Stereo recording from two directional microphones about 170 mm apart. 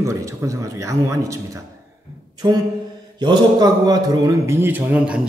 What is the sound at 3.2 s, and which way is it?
A man's voice, 25° right (ahead or behind).